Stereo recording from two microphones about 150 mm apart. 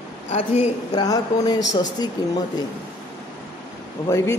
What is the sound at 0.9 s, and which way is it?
Speech, 25° left (ahead or behind).